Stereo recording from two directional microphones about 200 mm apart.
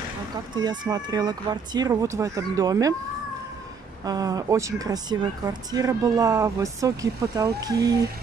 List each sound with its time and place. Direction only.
0.6 s speech: 20° right (ahead or behind)
4.0 s speech: 20° right (ahead or behind)